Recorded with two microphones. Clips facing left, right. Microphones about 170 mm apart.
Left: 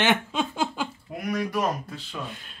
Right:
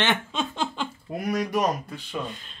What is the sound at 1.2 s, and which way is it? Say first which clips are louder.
Speech: right 2 dB; 25° right (ahead or behind).